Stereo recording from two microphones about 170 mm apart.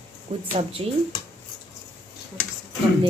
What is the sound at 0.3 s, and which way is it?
Speech, 40° right (ahead or behind).